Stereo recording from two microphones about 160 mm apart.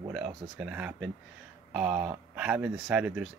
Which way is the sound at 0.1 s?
5° right (ahead or behind).